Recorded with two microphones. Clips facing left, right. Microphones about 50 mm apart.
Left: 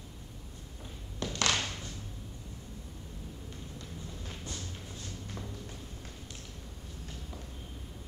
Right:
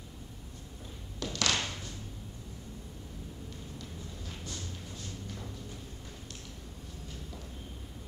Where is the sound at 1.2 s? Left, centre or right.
Left.